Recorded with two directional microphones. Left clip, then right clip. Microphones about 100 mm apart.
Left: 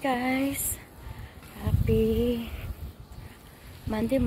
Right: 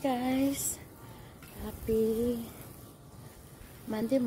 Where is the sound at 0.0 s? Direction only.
25° right (ahead or behind).